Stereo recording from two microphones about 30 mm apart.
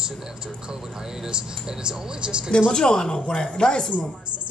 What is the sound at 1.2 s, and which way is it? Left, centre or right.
Speech, right.